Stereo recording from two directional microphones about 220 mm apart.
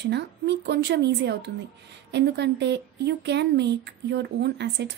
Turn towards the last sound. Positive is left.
turn(degrees=-50)  # may be behind; listen again after turning